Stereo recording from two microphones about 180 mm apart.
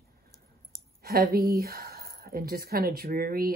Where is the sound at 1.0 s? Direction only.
55° right (ahead or behind).